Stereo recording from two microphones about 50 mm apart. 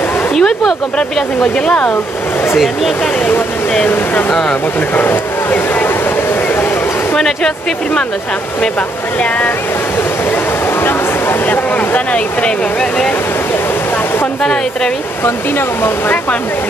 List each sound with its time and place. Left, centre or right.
0.3 s a sound: centre
0.9 s speech: centre
2.5 s speech: centre
3.9 s speech: left
4.7 s a sound: left
7.2 s speech: centre
10.3 s a sound: left
11.7 s speech: left
14.4 s speech: centre
15.2 s speech: left